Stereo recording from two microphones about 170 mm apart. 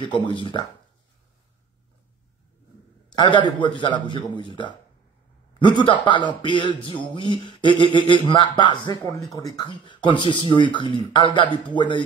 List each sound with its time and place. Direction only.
0.0 s speech: 30° left (ahead or behind)
3.1 s speech: 25° left (ahead or behind)
5.9 s speech: 30° left (ahead or behind)